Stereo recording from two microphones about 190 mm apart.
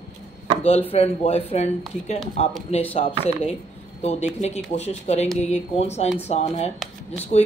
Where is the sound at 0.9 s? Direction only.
35° left (ahead or behind).